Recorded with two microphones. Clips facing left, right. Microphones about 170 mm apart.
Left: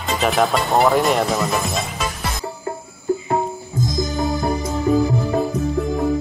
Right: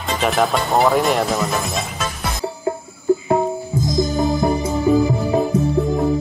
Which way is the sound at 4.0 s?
20° right (ahead or behind).